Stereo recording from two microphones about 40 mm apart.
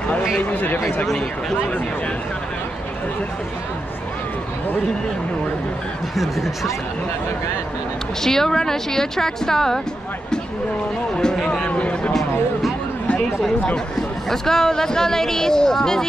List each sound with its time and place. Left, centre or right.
0.4 s speech: left
6.1 s speech: centre
8.2 s speech: centre
11.1 s speech: centre
11.7 s speech: left
12.1 s speech: centre
14.3 s speech: centre